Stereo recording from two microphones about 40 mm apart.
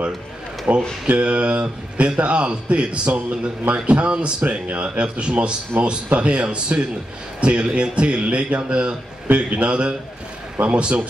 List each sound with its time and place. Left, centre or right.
0.7 s speech: right
1.1 s a man's voice: right